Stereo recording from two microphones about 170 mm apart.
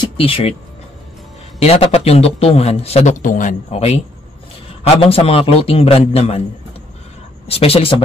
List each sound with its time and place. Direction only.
0.0 s speech: 30° left (ahead or behind)
1.6 s a man's voice: 35° left (ahead or behind)
7.4 s a man's voice: 35° left (ahead or behind)